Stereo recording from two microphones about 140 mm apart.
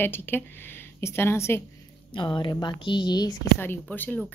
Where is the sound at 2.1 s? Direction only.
35° left (ahead or behind).